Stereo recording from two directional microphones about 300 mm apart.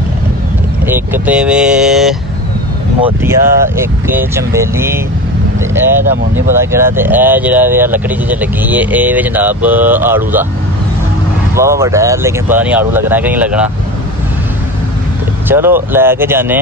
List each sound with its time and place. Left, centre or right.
0.8 s speech: centre
3.2 s speech: centre
6.0 s speech: centre
11.5 s speech: centre
15.4 s speech: centre